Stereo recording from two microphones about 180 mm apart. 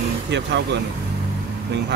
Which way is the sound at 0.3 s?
75° right (ahead or behind).